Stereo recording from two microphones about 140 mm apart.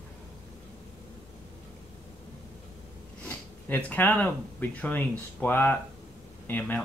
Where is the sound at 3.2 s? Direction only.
10° left (ahead or behind).